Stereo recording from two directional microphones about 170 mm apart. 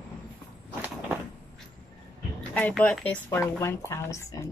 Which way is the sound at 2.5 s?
5° left (ahead or behind).